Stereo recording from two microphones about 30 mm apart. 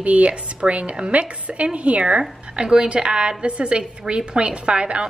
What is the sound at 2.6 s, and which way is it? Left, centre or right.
A woman's voice, right.